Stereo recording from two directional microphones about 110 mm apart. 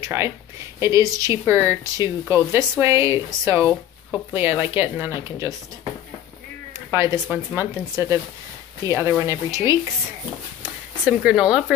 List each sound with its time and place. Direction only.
0.0 s speech: 25° right (ahead or behind)
6.9 s speech: 20° right (ahead or behind)
10.6 s speech: 10° right (ahead or behind)